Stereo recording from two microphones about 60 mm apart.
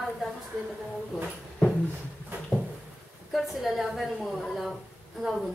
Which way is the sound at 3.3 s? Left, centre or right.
Centre.